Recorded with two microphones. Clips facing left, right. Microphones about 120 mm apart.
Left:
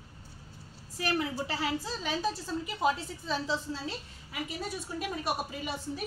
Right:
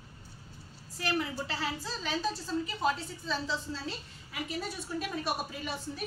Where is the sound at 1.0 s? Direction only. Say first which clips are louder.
Left 2 dB; 10° left (ahead or behind).